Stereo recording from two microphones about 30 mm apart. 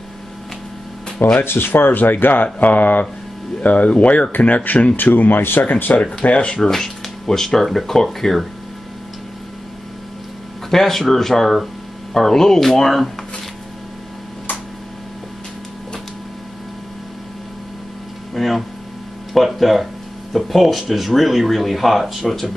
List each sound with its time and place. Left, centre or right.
1.2 s speech: left
3.6 s speech: left
4.7 s speech: left
6.6 s speech: centre
10.7 s speech: centre
18.3 s a sound: centre
19.3 s speech: centre
22.2 s speech: centre